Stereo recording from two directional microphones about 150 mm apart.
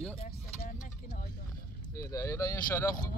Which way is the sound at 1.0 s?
90° left.